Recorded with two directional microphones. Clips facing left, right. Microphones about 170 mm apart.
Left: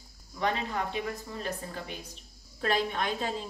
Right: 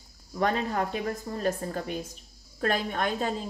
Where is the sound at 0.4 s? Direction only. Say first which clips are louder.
Right 4 dB; 45° right (ahead or behind).